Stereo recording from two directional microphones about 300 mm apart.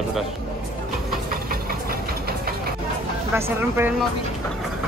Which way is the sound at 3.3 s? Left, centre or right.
Centre.